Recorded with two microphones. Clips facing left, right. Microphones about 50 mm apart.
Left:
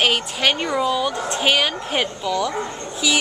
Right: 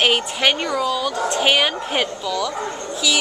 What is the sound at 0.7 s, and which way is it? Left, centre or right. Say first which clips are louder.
Speech: left 1 dB; centre.